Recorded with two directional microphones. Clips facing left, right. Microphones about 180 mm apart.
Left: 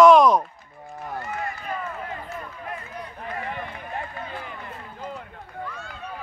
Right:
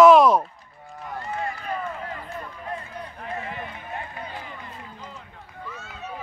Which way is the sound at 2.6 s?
30° right (ahead or behind).